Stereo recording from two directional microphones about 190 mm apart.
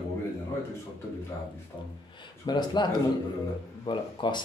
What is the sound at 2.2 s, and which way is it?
Speech, 25° left (ahead or behind).